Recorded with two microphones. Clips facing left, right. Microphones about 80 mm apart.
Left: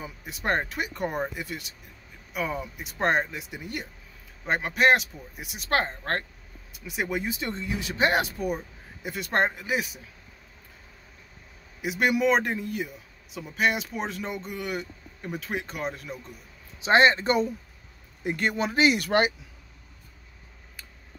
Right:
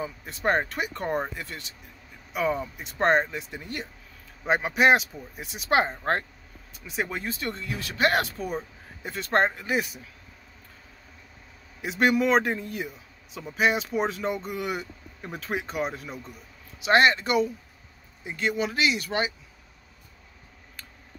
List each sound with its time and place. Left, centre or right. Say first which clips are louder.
0.4 s a man's voice: right 2 dB; centre
2.3 s a man's voice: right 4 dB; centre
5.7 s speech: right 3 dB; centre
6.9 s speech: left 1 dB; centre
11.8 s a man's voice: right 1 dB; centre
16.8 s speech: left 1 dB; left
18.2 s speech: left 1 dB; left
18.7 s speech: left 4 dB; left
18.9 s speech: left 5 dB; left
20.8 s a sound: right 1 dB; centre